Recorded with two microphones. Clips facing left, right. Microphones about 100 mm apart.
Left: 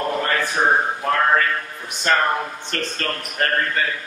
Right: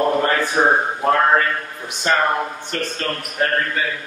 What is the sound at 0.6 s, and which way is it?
Speech, 25° right (ahead or behind).